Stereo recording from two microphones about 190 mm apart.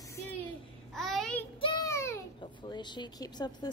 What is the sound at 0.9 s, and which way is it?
Female singing, centre (ahead or behind).